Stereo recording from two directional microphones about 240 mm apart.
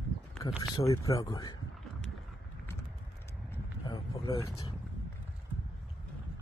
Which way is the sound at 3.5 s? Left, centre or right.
Centre.